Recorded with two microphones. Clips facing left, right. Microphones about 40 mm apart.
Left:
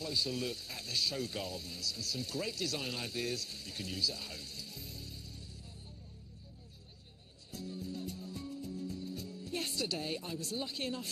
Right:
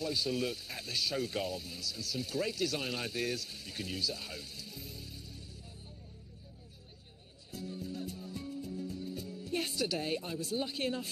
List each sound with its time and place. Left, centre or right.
0.0 s speech: centre
7.5 s music: centre